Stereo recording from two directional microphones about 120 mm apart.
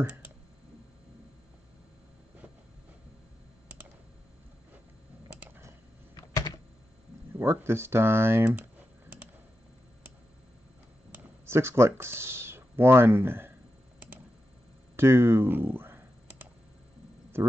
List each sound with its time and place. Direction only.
0.0 s speech: 15° right (ahead or behind)
6.1 s typing: 30° left (ahead or behind)
7.3 s speech: 20° right (ahead or behind)
11.4 s speech: 20° right (ahead or behind)
15.0 s a sound: 20° right (ahead or behind)